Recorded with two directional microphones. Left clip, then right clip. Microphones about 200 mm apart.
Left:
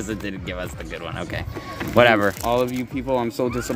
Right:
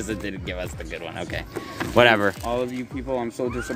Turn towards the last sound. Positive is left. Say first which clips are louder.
# left 4 dB
turn(degrees=50)  # may be behind; listen again after turning